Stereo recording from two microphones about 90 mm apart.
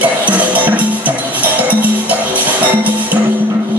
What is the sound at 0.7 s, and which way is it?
Music, 15° right (ahead or behind).